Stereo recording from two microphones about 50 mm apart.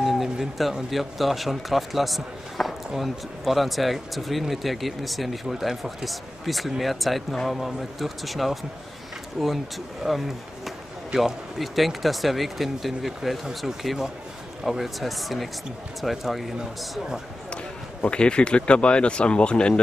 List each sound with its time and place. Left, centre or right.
0.0 s a sound: centre
0.8 s speech: centre
18.1 s speech: left